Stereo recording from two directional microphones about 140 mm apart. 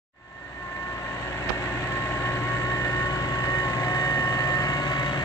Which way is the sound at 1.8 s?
15° left (ahead or behind).